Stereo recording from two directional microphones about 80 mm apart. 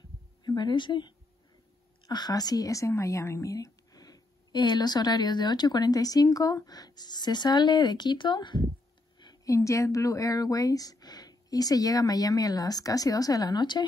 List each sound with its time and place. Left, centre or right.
0.4 s speech: left
2.0 s speech: left
9.2 s speech: left